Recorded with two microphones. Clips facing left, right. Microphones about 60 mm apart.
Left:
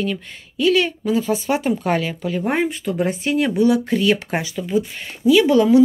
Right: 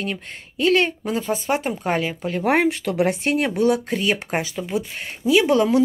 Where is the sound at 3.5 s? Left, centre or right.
Right.